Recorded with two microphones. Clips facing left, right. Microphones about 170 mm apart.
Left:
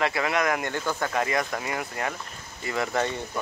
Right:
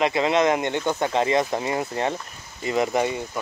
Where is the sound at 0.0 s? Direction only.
20° right (ahead or behind).